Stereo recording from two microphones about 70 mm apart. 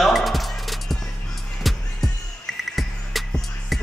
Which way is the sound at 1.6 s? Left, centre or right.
Centre.